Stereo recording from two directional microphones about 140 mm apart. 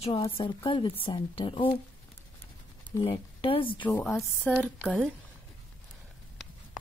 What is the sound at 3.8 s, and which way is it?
A woman's voice, 5° left (ahead or behind).